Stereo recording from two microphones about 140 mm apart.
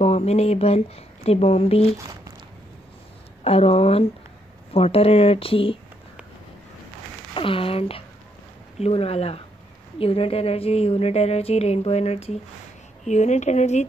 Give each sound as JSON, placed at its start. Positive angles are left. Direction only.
{"t": 0.0, "sound": "speech", "side_deg": 50}
{"t": 2.0, "sound": "speech", "side_deg": -25}
{"t": 3.4, "sound": "speech", "side_deg": 45}
{"t": 7.3, "sound": "speech", "side_deg": 40}